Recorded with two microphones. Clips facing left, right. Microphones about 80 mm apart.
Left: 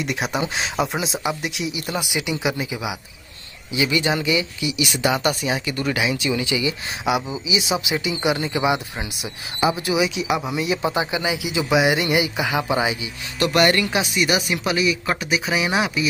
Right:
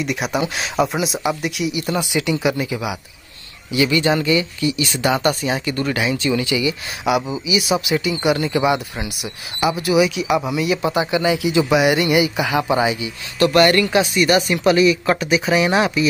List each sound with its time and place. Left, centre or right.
0.0 s speech: left; by 16.1 s centre